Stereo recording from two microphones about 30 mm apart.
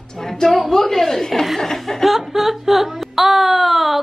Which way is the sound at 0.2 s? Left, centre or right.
Centre.